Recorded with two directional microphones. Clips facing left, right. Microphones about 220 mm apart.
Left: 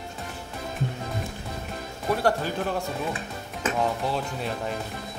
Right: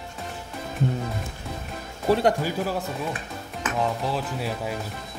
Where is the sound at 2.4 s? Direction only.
5° right (ahead or behind).